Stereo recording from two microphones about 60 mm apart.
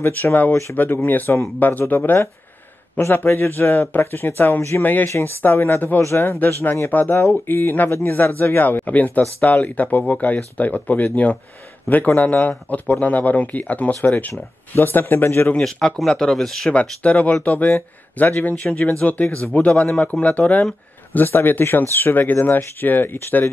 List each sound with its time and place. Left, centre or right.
0.0 s a man's voice: left
3.0 s a man's voice: left
5.0 s a man's voice: left
6.0 s speech: left
6.4 s a man's voice: left
15.6 s speech: centre
17.0 s speech: left
19.7 s speech: centre
21.1 s a man's voice: left